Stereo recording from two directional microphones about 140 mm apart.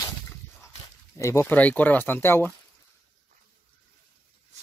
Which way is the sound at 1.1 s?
20° left (ahead or behind).